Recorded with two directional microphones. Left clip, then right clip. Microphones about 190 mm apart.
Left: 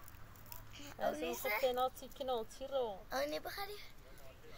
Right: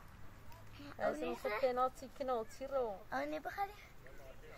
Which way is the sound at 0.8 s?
80° left.